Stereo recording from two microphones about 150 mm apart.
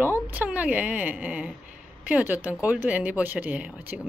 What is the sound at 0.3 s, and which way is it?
Speech, 10° right (ahead or behind).